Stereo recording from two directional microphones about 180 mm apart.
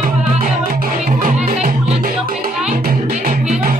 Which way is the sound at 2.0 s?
50° right (ahead or behind).